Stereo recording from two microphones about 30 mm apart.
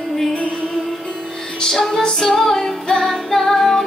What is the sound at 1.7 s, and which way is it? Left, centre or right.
Music, centre.